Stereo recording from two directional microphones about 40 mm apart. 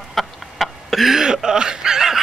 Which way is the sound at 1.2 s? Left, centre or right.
Centre.